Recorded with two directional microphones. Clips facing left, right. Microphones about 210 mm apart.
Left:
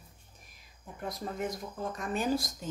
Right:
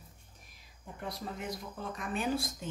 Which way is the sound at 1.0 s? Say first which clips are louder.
Left 4 dB; 45° left (ahead or behind).